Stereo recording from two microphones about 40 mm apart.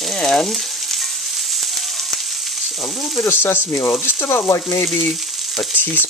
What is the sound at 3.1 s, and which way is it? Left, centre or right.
Speech, left.